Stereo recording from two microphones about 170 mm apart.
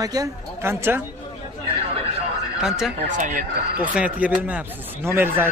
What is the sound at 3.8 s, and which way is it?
A man's voice, 10° right (ahead or behind).